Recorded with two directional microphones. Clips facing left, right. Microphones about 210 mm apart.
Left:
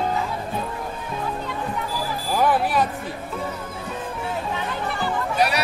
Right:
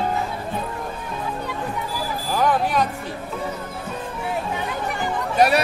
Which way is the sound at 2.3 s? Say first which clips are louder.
Even; 5° left (ahead or behind).